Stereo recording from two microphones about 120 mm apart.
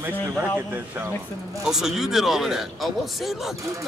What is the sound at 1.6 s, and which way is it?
Speech, 5° right (ahead or behind).